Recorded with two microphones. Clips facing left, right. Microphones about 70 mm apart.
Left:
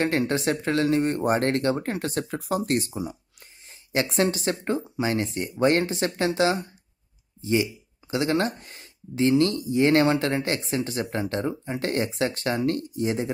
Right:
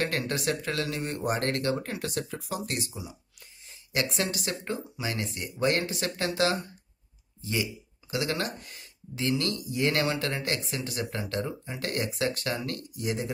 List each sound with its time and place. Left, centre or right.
0.0 s speech: left
3.9 s speech: left